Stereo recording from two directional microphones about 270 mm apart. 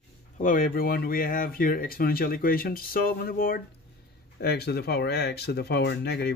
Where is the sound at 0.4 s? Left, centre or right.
Left.